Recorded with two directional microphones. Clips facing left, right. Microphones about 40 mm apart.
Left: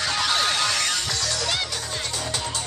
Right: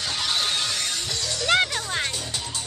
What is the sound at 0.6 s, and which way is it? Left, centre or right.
Music, left.